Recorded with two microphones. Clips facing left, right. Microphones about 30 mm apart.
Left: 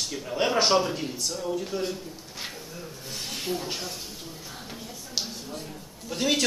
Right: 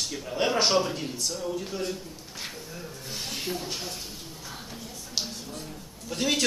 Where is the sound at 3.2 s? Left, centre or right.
Centre.